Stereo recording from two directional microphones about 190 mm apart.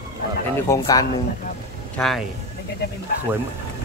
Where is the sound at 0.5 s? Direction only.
15° left (ahead or behind).